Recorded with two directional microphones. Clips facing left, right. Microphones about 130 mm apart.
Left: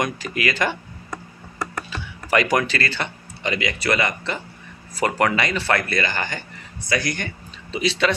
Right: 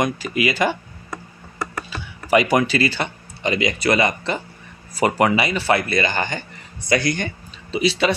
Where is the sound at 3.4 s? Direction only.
25° right (ahead or behind).